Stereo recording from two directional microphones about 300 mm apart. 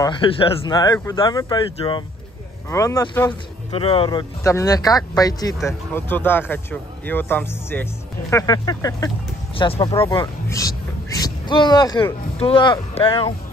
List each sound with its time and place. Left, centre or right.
0.0 s speech: centre